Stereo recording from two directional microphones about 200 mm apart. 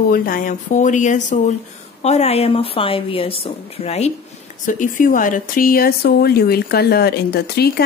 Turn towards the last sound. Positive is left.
turn(degrees=50)  # may be behind; listen again after turning